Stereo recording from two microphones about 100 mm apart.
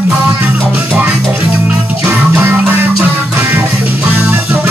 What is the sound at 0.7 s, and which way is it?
Music, 10° right (ahead or behind).